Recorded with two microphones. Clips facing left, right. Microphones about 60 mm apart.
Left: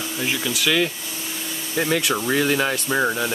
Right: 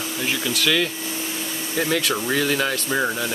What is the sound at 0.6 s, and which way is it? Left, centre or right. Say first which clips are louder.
Speech: left 1 dB; centre.